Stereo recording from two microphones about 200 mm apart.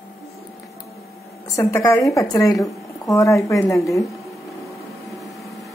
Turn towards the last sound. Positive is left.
turn(degrees=15)  # may be behind; listen again after turning